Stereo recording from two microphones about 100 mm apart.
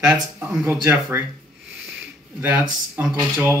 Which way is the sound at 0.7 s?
20° right (ahead or behind).